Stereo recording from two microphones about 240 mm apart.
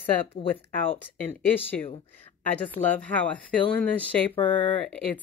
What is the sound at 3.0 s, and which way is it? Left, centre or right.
A woman's voice, centre.